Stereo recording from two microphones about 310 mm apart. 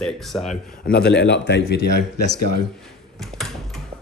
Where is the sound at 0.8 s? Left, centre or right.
Left.